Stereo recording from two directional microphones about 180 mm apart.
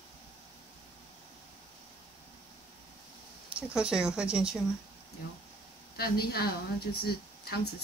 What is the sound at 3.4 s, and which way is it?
Speech, 5° right (ahead or behind).